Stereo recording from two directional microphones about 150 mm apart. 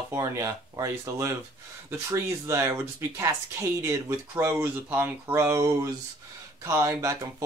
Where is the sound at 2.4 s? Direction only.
20° right (ahead or behind).